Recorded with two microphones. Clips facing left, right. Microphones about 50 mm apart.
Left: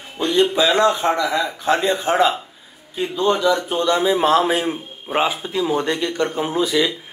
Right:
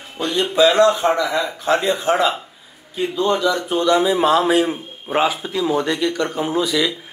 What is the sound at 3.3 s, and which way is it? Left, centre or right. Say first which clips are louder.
A man's voice: left 2 dB; left.